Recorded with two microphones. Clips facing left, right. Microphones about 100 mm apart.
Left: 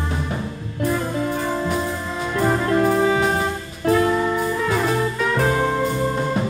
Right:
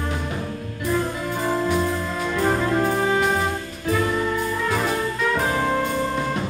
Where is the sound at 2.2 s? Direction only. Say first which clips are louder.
Left 2 dB; 5° left (ahead or behind).